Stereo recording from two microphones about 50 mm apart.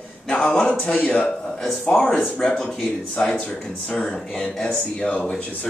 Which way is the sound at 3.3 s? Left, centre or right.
Left.